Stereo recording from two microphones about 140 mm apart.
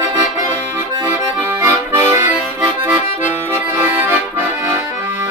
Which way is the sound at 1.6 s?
15° right (ahead or behind).